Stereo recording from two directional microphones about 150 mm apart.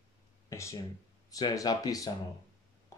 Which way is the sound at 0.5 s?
20° left (ahead or behind).